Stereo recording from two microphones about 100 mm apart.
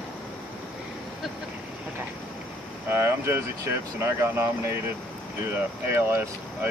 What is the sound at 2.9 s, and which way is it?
Speech, 25° right (ahead or behind).